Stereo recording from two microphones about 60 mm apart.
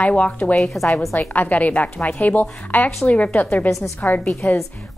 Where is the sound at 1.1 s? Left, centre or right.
Left.